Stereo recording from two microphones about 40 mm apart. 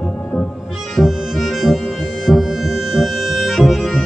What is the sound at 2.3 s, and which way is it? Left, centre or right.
Music, left.